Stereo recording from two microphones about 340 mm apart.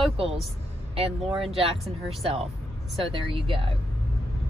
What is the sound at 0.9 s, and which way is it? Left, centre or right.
Speech, centre.